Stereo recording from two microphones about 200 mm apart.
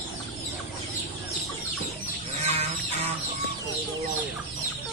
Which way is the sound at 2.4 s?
30° right (ahead or behind).